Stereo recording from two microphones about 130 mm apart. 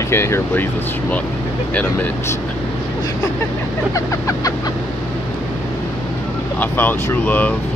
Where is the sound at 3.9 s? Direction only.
25° left (ahead or behind).